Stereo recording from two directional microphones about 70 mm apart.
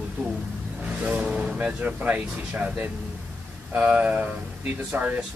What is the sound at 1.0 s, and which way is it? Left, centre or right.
Speech, centre.